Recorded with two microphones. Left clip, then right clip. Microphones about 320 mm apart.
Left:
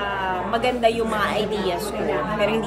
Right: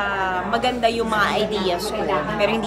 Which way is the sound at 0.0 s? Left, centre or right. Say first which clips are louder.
Right 2 dB; centre.